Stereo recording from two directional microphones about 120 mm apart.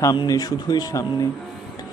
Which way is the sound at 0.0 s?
35° left (ahead or behind).